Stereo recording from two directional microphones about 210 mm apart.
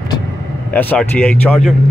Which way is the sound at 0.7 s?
10° left (ahead or behind).